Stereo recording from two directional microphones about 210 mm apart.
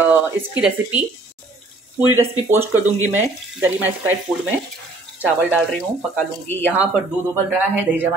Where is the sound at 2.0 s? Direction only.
10° right (ahead or behind).